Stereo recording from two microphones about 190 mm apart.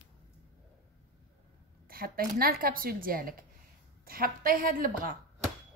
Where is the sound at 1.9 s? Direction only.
50° right (ahead or behind).